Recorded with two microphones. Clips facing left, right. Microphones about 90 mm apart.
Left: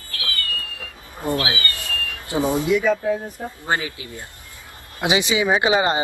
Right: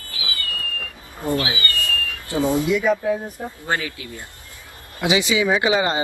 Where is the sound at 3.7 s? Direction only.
20° left (ahead or behind).